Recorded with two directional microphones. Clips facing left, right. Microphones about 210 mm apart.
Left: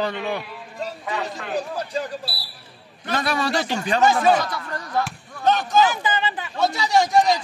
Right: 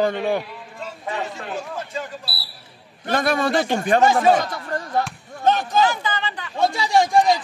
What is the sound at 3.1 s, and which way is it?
Speech, 50° right (ahead or behind).